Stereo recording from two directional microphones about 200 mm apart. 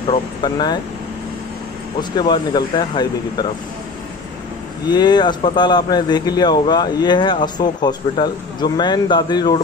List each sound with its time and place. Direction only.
0.1 s speech: 20° left (ahead or behind)
2.0 s speech: 20° left (ahead or behind)
4.9 s speech: 20° left (ahead or behind)